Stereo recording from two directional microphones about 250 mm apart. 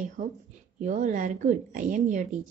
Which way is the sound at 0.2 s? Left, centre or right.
Right.